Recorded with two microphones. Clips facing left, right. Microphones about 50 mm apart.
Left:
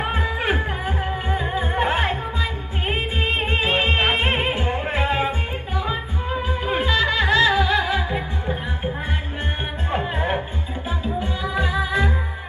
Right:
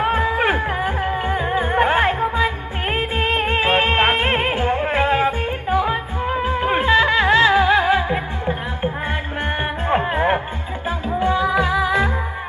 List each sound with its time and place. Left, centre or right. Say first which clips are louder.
0.0 s music: right 6 dB; right
9.8 s music: right 6 dB; right